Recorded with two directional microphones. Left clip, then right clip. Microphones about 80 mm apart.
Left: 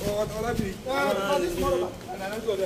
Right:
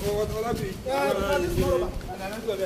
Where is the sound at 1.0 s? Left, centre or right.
Left.